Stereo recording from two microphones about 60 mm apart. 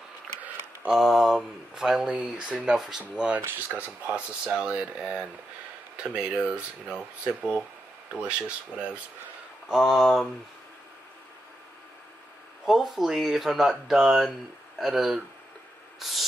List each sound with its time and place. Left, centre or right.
0.9 s speech: centre
3.5 s speech: right
4.1 s speech: centre
9.7 s speech: centre
12.6 s speech: centre